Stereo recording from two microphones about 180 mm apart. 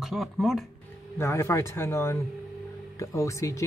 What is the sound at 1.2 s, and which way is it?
Speech, 15° left (ahead or behind).